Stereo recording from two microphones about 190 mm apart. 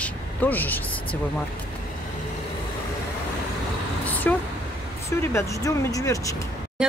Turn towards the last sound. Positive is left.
turn(degrees=-5)  # may be behind; listen again after turning